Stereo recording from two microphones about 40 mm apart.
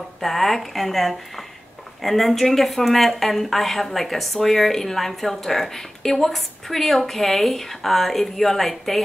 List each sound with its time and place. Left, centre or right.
0.2 s a woman's voice: centre